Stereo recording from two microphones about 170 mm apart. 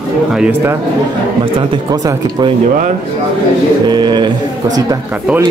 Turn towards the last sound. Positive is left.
turn(degrees=-25)  # may be behind; listen again after turning